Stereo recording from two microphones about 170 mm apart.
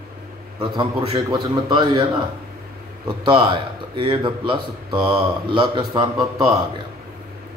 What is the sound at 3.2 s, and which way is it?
Speech, 25° right (ahead or behind).